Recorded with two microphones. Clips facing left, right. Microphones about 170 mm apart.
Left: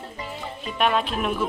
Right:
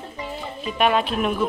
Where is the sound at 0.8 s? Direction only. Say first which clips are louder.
Right 3 dB; centre (ahead or behind).